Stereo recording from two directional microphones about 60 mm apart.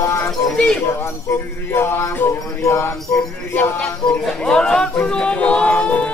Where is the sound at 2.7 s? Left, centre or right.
Left.